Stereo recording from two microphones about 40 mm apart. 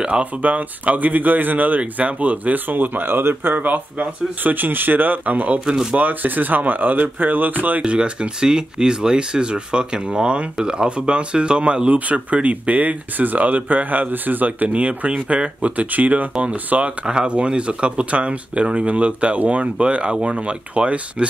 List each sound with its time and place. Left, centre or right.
0.1 s speech: right
1.8 s speech: right
4.4 s speech: right
5.7 s speech: right
5.9 s speech: right
7.8 s speech: right
14.7 s speech: right